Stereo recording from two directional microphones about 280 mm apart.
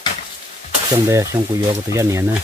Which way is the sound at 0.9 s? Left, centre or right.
Centre.